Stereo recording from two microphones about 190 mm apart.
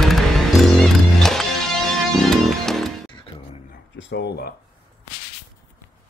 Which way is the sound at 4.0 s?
65° left (ahead or behind).